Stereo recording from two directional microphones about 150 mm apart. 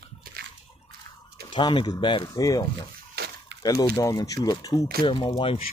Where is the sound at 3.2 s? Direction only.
90° right.